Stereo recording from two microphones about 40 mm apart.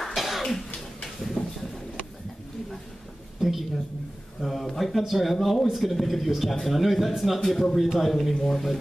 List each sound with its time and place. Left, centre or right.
0.1 s cough: centre
0.7 s a sound: centre
3.3 s a woman's voice: centre